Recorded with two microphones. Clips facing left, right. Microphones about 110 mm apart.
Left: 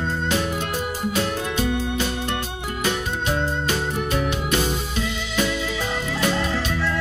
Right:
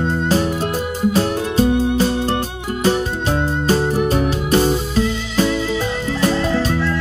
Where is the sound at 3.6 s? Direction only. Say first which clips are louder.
Right 8 dB; 35° right (ahead or behind).